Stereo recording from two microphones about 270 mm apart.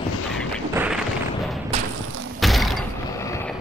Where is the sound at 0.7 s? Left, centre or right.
Centre.